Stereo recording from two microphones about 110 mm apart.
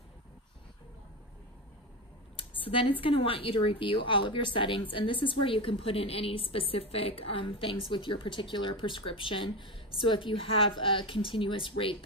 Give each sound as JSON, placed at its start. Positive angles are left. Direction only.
{"t": 2.3, "sound": "speech", "side_deg": 55}